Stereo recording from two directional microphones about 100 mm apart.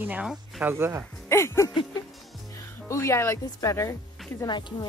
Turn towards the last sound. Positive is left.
turn(degrees=50)  # may be behind; listen again after turning